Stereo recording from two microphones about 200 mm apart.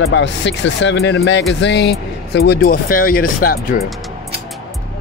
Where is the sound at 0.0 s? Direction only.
65° left (ahead or behind); by 3.8 s 45° left (ahead or behind).